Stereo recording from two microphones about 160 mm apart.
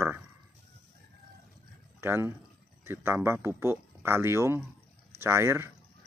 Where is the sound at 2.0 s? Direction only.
15° right (ahead or behind).